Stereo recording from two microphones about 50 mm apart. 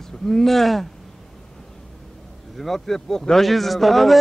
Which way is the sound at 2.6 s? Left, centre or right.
Centre.